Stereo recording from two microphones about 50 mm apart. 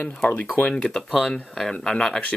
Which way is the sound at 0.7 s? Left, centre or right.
Centre.